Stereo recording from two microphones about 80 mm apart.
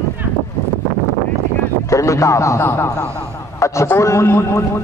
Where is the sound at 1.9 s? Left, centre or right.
Left.